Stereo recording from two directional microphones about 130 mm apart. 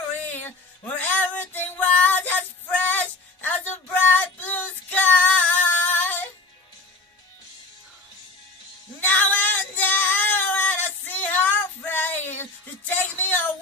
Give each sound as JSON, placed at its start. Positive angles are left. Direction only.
{"t": 0.3, "sound": "female singing", "side_deg": 15}
{"t": 9.0, "sound": "female singing", "side_deg": 15}
{"t": 12.8, "sound": "music", "side_deg": 15}